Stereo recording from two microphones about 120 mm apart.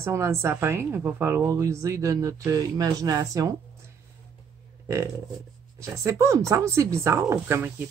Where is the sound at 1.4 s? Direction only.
25° right (ahead or behind).